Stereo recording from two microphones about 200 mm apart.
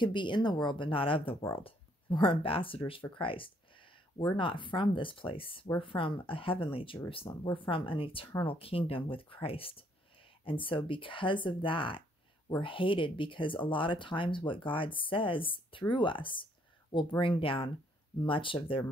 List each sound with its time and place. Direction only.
0.0 s speech: 25° left (ahead or behind)